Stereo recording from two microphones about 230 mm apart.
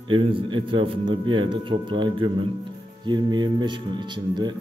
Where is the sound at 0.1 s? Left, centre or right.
Right.